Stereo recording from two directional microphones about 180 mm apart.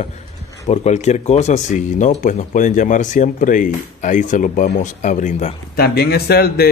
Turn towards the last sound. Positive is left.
turn(degrees=60)  # may be behind; listen again after turning